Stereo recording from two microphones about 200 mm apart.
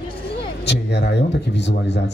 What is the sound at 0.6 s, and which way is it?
A man's voice, 60° left (ahead or behind).